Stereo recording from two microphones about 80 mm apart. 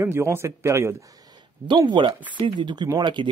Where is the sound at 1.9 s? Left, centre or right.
Right.